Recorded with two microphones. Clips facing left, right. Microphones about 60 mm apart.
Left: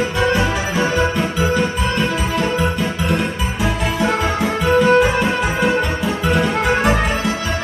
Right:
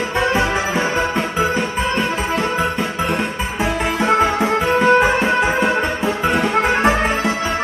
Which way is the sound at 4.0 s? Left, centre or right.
Right.